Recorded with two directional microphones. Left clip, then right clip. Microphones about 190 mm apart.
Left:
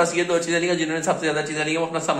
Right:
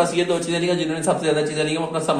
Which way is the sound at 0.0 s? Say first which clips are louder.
Even; 20° left (ahead or behind).